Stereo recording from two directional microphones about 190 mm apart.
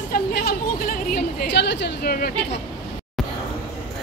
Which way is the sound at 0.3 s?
55° left (ahead or behind).